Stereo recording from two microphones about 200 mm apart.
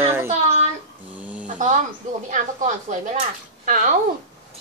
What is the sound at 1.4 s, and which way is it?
Speech, 40° right (ahead or behind).